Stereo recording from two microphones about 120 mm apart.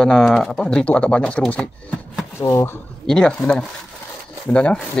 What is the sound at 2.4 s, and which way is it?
Speech, 25° left (ahead or behind).